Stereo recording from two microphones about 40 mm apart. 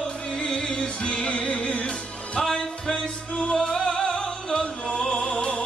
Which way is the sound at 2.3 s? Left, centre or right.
Centre.